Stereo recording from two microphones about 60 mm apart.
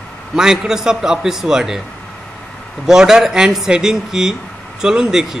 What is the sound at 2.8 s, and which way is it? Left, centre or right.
A man's voice, centre.